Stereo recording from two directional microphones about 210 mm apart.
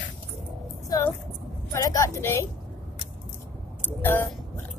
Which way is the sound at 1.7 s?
15° left (ahead or behind).